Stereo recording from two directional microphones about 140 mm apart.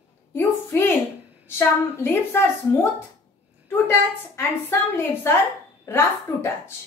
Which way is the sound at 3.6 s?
20° left (ahead or behind).